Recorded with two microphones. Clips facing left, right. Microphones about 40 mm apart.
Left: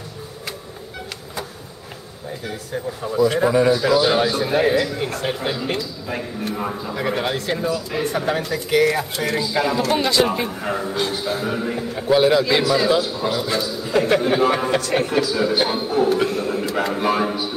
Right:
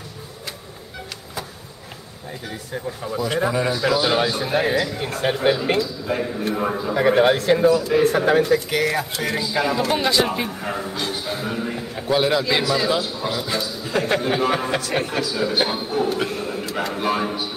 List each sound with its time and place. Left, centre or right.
3.1 s a man's voice: centre
5.2 s speech: right
5.6 s a man's voice: centre
6.4 s a man's voice: centre
7.1 s speech: right
8.2 s a man's voice: centre
8.5 s a man's voice: centre